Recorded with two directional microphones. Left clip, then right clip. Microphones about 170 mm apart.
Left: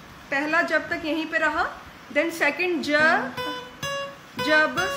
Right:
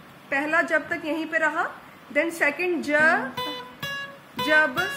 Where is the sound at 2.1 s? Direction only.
20° right (ahead or behind).